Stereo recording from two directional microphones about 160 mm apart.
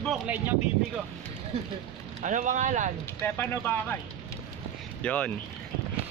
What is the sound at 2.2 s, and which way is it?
Speech, 50° right (ahead or behind).